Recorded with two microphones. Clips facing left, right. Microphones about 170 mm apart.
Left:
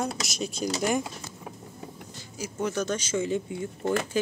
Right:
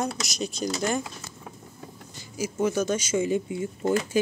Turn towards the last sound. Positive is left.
turn(degrees=-10)  # may be behind; listen again after turning